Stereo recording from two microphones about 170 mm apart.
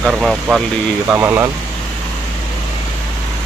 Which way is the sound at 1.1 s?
15° right (ahead or behind).